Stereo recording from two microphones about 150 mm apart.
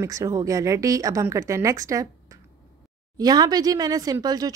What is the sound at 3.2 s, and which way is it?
Speech, 25° right (ahead or behind).